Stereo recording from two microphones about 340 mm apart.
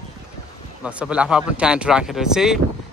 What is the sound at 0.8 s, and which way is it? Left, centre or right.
Speech, centre.